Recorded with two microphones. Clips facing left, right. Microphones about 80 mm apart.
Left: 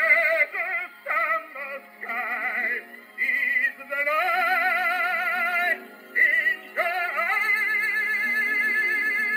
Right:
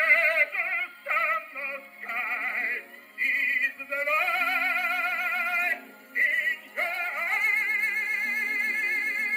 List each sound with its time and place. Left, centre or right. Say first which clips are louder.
0.1 s synthetic singing: left 2 dB; left
1.6 s music: left 2 dB; left